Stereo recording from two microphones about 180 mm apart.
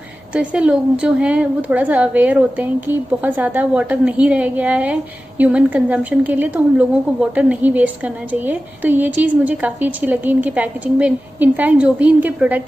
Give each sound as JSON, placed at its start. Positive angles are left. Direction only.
{"t": 0.3, "sound": "a woman's voice", "side_deg": -5}